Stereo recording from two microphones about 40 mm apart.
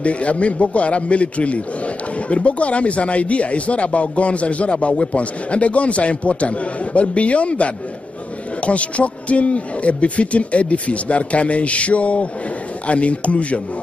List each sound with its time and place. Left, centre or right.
0.0 s speech: left